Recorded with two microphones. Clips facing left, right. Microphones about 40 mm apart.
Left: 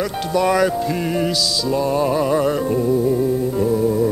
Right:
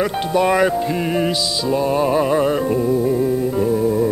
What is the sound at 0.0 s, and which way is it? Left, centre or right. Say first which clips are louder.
Music: right 2 dB; right.